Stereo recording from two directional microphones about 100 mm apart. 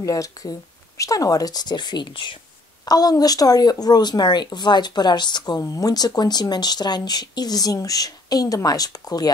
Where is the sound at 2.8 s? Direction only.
40° left (ahead or behind).